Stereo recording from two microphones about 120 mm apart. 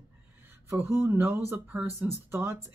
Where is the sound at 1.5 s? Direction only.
10° right (ahead or behind).